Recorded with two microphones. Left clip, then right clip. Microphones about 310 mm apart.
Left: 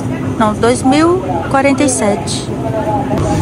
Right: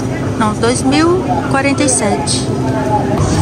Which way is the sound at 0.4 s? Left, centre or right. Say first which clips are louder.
Left 3 dB; centre.